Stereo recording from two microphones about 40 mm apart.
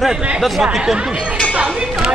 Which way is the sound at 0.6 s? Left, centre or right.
Centre.